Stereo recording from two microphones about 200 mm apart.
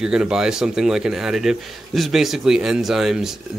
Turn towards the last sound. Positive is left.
turn(degrees=0)  # may be behind; listen again after turning